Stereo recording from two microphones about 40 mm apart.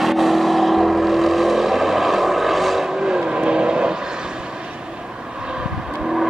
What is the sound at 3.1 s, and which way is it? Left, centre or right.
Vehicle, right.